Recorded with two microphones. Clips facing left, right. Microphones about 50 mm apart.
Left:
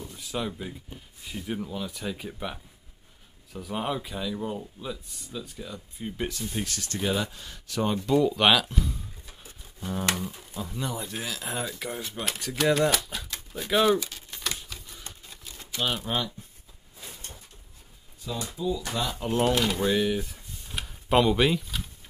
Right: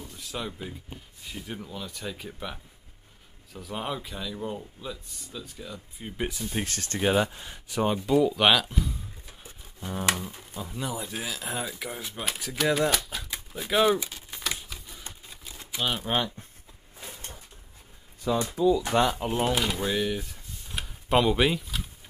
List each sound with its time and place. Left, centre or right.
0.2 s speech: centre
6.5 s speech: right
7.0 s speech: centre
14.0 s typewriter: centre
15.7 s speech: centre
16.1 s speech: right
18.3 s speech: right
19.1 s speech: centre